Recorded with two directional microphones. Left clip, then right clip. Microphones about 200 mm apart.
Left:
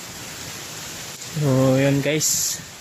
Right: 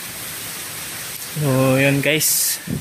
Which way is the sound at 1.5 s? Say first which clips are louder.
Right 2 dB; 5° left (ahead or behind).